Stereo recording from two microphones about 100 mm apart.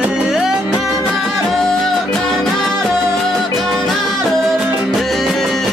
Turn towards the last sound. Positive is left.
turn(degrees=5)  # may be behind; listen again after turning